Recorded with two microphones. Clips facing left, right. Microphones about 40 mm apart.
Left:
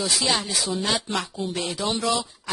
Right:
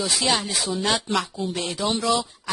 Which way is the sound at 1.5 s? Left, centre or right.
Centre.